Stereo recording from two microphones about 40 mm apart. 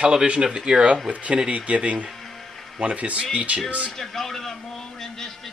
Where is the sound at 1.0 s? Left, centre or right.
Right.